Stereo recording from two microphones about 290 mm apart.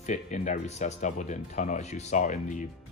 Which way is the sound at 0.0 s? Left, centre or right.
Left.